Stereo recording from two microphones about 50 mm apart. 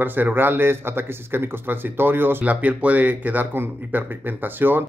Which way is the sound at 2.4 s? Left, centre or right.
Right.